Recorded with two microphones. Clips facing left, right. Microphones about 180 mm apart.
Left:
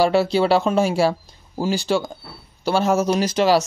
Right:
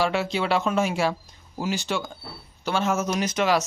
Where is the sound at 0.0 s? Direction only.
35° left (ahead or behind).